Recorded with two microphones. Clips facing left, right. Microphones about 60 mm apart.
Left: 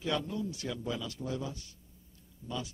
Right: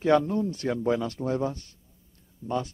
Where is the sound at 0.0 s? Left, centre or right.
Right.